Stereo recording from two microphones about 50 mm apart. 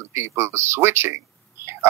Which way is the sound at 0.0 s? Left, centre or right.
Right.